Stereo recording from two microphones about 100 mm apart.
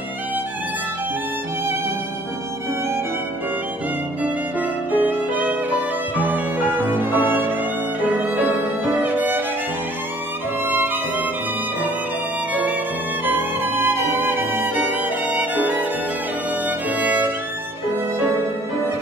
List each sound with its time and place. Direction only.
4.2 s violin: 15° right (ahead or behind)
10.6 s music: 20° right (ahead or behind)
13.2 s music: 20° right (ahead or behind)
16.6 s violin: 15° right (ahead or behind)